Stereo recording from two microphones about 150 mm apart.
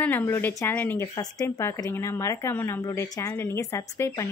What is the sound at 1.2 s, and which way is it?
Speech, 20° left (ahead or behind).